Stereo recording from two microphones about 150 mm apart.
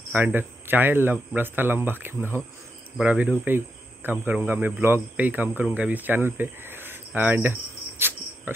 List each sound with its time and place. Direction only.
0.1 s speech: 15° right (ahead or behind)
8.0 s cricket: 15° right (ahead or behind)